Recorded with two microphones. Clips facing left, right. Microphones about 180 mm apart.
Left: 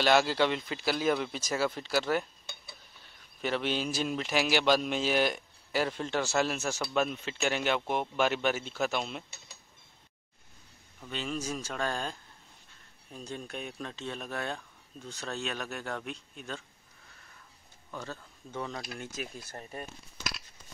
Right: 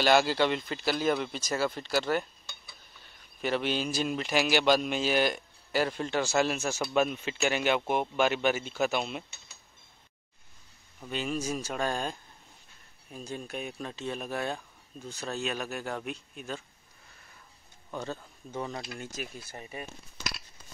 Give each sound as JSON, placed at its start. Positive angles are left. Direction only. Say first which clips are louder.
{"t": 0.0, "sound": "a man's voice", "louder": "right 1 dB", "side_deg": 0}
{"t": 3.3, "sound": "a man's voice", "louder": "right 2 dB", "side_deg": -5}
{"t": 11.0, "sound": "speech", "louder": "right 3 dB", "side_deg": -10}
{"t": 17.9, "sound": "speech", "louder": "right 4 dB", "side_deg": -20}
{"t": 18.9, "sound": "a man's voice", "louder": "even", "side_deg": -5}